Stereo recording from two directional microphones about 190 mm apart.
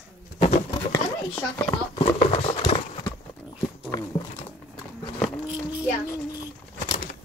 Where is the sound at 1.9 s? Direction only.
30° left (ahead or behind).